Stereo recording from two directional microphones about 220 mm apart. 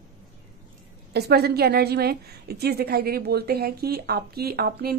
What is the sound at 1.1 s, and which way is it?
A woman's voice, 50° right (ahead or behind).